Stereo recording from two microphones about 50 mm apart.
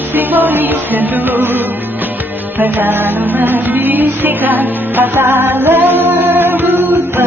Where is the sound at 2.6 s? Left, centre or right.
Right.